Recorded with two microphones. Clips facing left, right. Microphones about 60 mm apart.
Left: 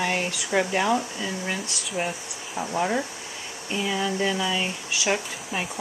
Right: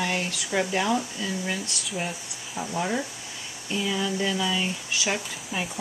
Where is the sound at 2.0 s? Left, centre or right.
Centre.